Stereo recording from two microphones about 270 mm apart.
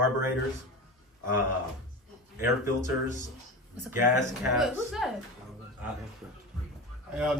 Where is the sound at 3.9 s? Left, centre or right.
Centre.